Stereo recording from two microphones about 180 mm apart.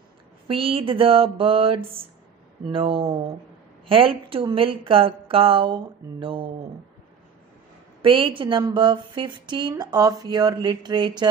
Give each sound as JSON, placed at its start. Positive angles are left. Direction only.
{"t": 0.5, "sound": "a sound", "side_deg": -30}
{"t": 3.9, "sound": "a woman's voice", "side_deg": -30}
{"t": 8.0, "sound": "a woman's voice", "side_deg": -30}